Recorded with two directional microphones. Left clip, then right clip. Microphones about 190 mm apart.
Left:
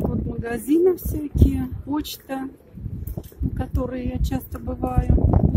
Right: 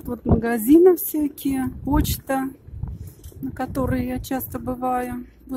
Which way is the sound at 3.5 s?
25° right (ahead or behind).